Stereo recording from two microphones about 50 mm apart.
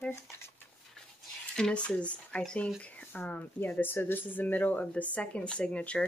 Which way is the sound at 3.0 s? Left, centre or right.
Left.